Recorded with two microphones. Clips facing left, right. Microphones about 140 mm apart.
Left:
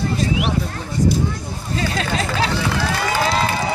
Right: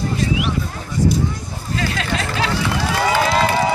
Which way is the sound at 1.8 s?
30° left (ahead or behind).